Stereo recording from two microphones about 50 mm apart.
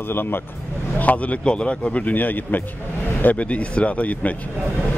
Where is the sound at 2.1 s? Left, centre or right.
Left.